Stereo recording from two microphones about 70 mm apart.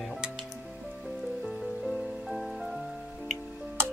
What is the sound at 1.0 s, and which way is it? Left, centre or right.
Rain on surface, centre.